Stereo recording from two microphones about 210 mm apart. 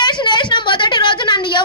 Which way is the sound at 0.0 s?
20° left (ahead or behind).